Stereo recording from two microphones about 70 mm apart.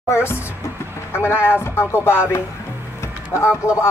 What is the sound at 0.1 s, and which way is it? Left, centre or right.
Speech, left.